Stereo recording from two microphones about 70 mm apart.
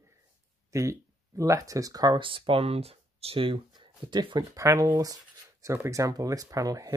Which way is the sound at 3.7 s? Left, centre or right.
Right.